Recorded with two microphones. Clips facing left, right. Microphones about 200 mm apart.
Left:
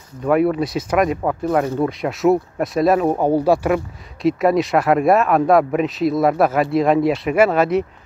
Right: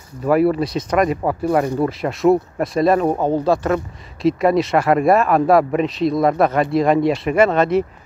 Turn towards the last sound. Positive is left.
turn(degrees=5)  # may be behind; listen again after turning